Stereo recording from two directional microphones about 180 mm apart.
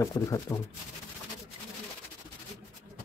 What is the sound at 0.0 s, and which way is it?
Speech, 20° left (ahead or behind).